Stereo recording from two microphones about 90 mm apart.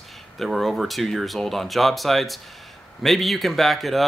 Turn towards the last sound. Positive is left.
turn(degrees=0)  # may be behind; listen again after turning